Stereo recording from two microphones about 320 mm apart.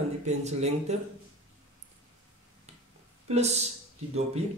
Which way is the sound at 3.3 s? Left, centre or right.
Right.